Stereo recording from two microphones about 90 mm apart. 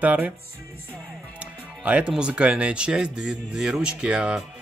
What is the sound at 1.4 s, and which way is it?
Speech, 15° right (ahead or behind).